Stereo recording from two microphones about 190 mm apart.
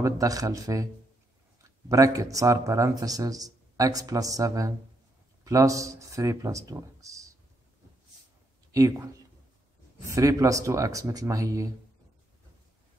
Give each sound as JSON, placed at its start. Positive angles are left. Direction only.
{"t": 0.0, "sound": "speech", "side_deg": -20}
{"t": 1.9, "sound": "speech", "side_deg": -15}
{"t": 8.7, "sound": "speech", "side_deg": -15}